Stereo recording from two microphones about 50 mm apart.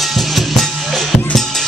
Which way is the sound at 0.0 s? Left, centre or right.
Centre.